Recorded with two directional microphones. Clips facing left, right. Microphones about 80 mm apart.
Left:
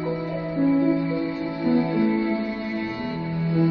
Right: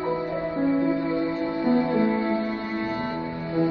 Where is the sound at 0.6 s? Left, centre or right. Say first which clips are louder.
Left 4 dB; right.